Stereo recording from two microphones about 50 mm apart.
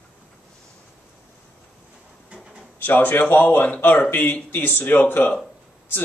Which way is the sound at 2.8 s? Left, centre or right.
Left.